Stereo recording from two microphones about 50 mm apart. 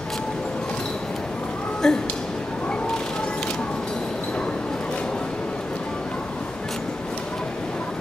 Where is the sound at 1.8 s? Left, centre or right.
Centre.